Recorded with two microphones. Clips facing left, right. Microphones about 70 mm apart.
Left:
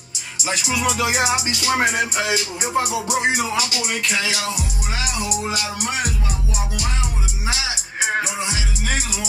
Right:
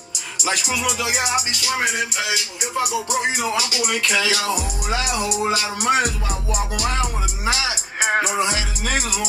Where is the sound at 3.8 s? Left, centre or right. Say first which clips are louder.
Right 2 dB; right.